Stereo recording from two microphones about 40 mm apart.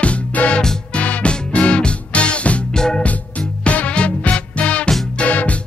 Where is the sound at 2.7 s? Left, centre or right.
Centre.